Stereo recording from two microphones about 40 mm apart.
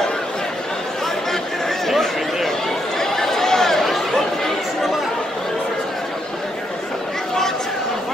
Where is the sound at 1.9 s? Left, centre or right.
Centre.